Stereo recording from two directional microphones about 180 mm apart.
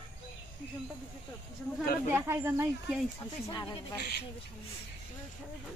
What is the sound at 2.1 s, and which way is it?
Speech, 15° right (ahead or behind).